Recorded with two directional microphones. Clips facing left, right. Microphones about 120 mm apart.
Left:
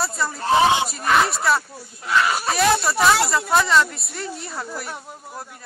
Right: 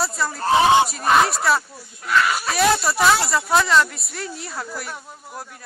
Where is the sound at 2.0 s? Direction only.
25° left (ahead or behind).